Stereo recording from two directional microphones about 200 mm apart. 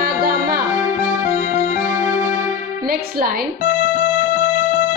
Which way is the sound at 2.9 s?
45° right (ahead or behind).